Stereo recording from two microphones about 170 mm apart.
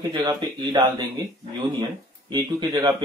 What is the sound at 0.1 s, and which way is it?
Speech, 25° right (ahead or behind).